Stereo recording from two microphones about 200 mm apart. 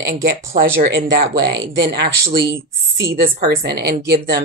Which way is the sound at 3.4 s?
50° right (ahead or behind).